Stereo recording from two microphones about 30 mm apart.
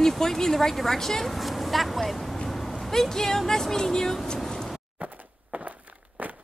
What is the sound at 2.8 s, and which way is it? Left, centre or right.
Speech, centre.